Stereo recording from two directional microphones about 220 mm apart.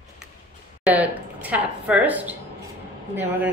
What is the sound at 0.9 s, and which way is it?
Speech, 5° right (ahead or behind).